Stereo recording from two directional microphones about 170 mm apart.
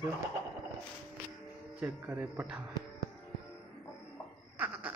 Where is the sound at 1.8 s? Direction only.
10° right (ahead or behind).